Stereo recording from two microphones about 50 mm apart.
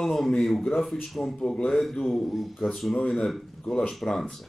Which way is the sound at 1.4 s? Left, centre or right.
Centre.